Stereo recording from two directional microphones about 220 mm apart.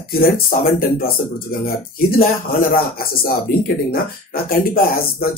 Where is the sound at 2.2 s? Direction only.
40° left (ahead or behind).